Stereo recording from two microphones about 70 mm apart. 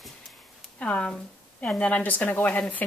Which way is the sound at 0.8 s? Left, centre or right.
Centre.